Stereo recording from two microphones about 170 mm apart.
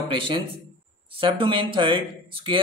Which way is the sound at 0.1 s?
30° right (ahead or behind).